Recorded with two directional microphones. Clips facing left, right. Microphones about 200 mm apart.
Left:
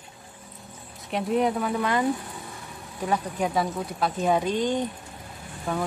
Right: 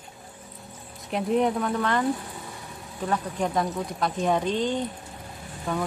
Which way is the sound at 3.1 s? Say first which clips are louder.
Left 1 dB; 10° left (ahead or behind).